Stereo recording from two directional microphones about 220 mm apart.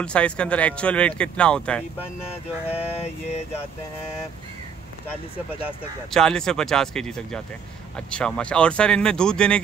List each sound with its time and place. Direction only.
0.0 s speech: 5° left (ahead or behind)
2.7 s mantra: 30° left (ahead or behind)
6.1 s speech: 5° left (ahead or behind)